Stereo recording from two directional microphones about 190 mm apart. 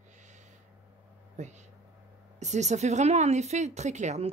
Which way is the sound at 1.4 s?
40° right (ahead or behind).